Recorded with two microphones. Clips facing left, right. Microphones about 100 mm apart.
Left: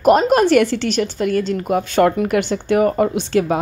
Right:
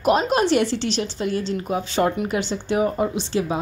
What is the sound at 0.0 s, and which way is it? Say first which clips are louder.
A woman's voice: left 6 dB; 50° left (ahead or behind).